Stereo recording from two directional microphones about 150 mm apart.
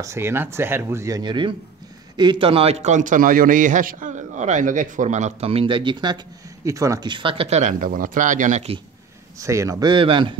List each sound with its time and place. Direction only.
0.0 s a man's voice: 15° right (ahead or behind); by 8.6 s 55° right (ahead or behind)
9.4 s speech: 20° right (ahead or behind)